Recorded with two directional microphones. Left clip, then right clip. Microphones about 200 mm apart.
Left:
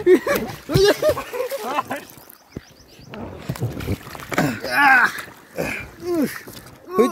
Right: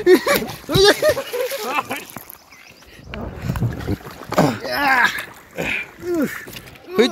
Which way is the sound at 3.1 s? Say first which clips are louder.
Right 3 dB; 50° right (ahead or behind).